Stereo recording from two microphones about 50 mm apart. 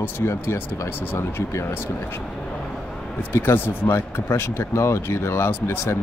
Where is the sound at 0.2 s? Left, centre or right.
Left.